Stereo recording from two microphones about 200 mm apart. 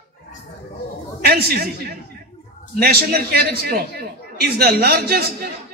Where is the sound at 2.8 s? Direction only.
50° right (ahead or behind).